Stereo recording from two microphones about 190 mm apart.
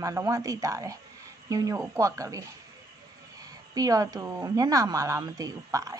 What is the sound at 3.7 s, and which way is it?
A woman's voice, 20° right (ahead or behind).